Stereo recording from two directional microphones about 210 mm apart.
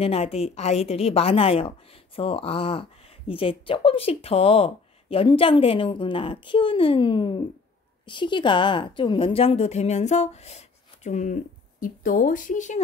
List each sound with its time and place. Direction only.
0.0 s speech: 30° left (ahead or behind)